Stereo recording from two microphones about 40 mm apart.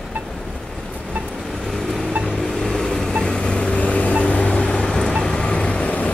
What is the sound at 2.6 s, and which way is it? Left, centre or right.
Vehicle, centre.